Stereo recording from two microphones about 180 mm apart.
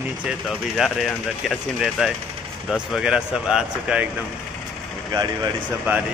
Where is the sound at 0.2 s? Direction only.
5° right (ahead or behind).